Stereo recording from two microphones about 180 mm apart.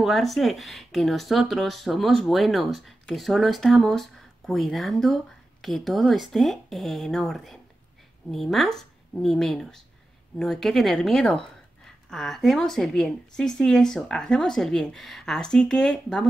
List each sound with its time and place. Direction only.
0.0 s speech: centre (ahead or behind)